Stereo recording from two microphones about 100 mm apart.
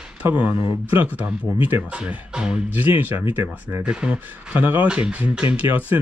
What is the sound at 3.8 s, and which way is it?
Speech, 10° right (ahead or behind).